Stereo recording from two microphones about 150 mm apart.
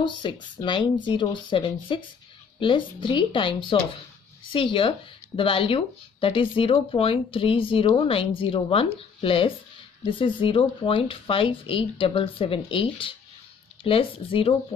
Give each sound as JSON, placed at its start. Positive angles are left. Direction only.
{"t": 0.0, "sound": "speech", "side_deg": 30}
{"t": 4.7, "sound": "speech", "side_deg": 35}